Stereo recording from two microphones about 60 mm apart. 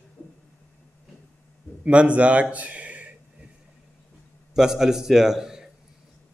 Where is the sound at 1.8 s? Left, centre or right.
Right.